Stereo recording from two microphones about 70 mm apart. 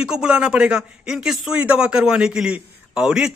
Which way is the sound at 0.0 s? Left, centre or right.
Centre.